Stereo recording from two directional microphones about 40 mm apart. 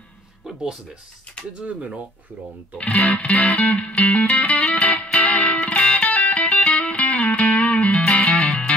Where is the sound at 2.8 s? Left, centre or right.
Left.